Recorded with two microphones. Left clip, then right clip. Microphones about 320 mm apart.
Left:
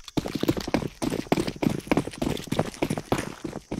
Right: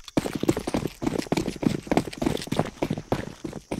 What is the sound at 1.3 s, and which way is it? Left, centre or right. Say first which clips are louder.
Clip-clop: left 4 dB; centre.